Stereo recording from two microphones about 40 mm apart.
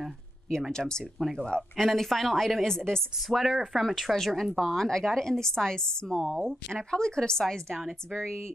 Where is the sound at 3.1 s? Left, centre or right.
Centre.